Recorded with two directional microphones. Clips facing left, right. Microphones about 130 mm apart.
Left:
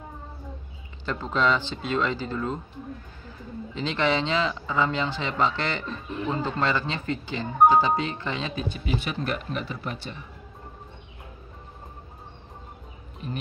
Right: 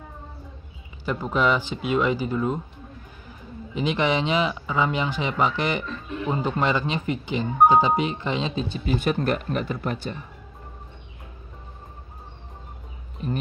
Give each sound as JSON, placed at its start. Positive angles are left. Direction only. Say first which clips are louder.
{"t": 1.0, "sound": "speech", "louder": "right 2 dB", "side_deg": -10}
{"t": 3.7, "sound": "speech", "louder": "right 2 dB", "side_deg": -15}
{"t": 8.8, "sound": "speech", "louder": "right 7 dB", "side_deg": -45}